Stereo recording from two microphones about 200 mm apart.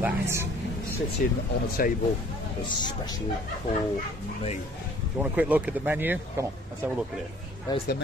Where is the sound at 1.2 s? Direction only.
45° left (ahead or behind).